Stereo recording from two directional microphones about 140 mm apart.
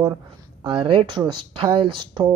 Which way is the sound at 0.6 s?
40° right (ahead or behind).